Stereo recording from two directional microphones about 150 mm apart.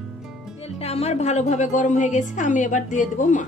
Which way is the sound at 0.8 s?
45° left (ahead or behind).